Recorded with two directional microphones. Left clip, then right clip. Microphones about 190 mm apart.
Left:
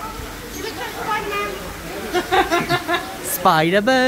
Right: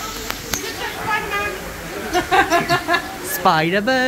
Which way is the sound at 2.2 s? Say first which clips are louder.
Right 2 dB; 70° right (ahead or behind).